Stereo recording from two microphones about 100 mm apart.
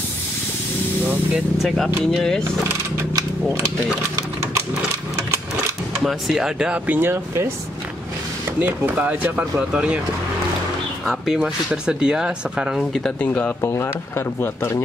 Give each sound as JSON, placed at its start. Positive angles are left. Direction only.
{"t": 2.1, "sound": "speech", "side_deg": 5}
{"t": 6.0, "sound": "speech", "side_deg": -5}
{"t": 8.5, "sound": "speech", "side_deg": -15}
{"t": 11.1, "sound": "speech", "side_deg": -5}
{"t": 13.2, "sound": "speech", "side_deg": 15}
{"t": 13.6, "sound": "speech", "side_deg": 25}